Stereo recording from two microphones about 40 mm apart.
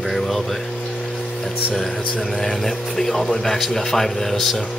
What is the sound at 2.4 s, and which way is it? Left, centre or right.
Speech, centre.